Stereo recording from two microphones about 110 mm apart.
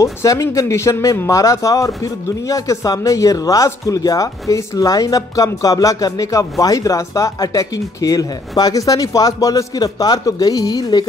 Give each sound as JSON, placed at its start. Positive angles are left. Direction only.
{"t": 0.0, "sound": "speech", "side_deg": 30}